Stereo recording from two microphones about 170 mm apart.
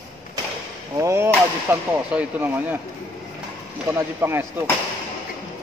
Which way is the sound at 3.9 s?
15° right (ahead or behind).